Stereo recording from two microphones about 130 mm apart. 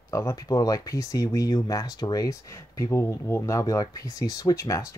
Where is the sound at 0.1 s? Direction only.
25° left (ahead or behind).